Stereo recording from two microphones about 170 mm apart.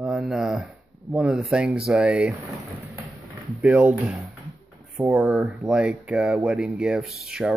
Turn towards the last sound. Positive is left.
turn(degrees=-5)  # may be behind; listen again after turning